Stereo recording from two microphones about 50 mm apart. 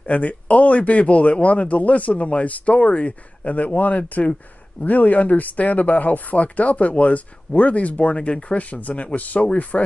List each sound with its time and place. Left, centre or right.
0.1 s speech: left